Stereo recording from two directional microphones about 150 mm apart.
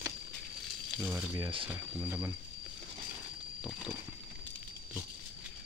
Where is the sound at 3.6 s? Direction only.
5° right (ahead or behind).